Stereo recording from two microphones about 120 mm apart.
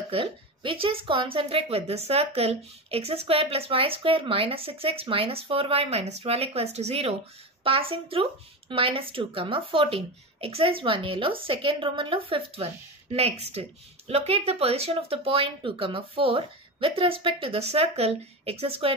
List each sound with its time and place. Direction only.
0.1 s a woman's voice: 45° right (ahead or behind)
13.1 s a woman's voice: 60° right (ahead or behind)